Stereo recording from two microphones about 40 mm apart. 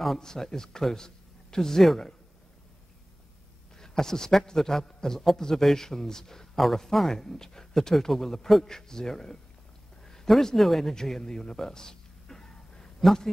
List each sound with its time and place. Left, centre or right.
0.2 s speech: centre
3.7 s a man's voice: centre
10.0 s a sound: centre
10.4 s speech: centre